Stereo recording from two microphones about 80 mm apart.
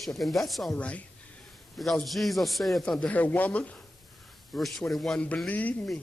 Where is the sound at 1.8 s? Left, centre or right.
Centre.